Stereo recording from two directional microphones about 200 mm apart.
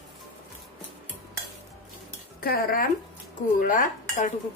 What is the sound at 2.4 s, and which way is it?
A woman's voice, 50° left (ahead or behind).